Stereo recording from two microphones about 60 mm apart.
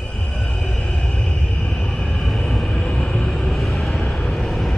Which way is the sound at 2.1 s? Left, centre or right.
Centre.